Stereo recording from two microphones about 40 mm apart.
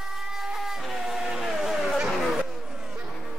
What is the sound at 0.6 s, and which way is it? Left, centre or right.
Vehicle, centre.